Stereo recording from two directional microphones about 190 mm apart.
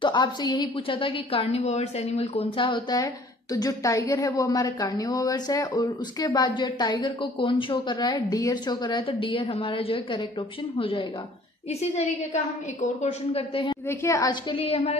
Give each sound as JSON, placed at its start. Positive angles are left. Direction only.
{"t": 0.0, "sound": "a woman's voice", "side_deg": 25}
{"t": 13.8, "sound": "a woman's voice", "side_deg": 15}
{"t": 14.5, "sound": "speech", "side_deg": 30}